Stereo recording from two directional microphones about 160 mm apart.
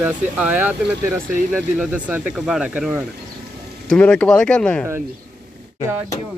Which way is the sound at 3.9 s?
10° left (ahead or behind).